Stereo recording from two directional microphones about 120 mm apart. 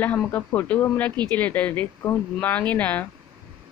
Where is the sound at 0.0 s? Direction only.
15° left (ahead or behind).